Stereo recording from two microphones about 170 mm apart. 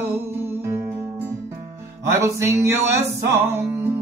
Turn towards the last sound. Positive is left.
turn(degrees=-15)  # may be behind; listen again after turning